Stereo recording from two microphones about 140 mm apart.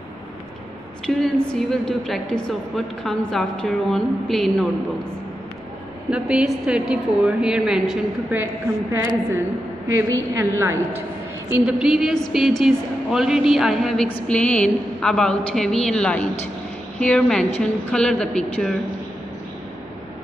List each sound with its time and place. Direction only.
1.0 s a woman's voice: 5° left (ahead or behind)
6.0 s a woman's voice: 5° right (ahead or behind)
9.8 s a woman's voice: 20° right (ahead or behind)
11.5 s a woman's voice: 5° right (ahead or behind)